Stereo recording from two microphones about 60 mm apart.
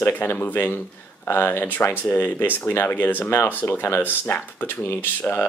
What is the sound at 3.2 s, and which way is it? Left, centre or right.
Speech, left.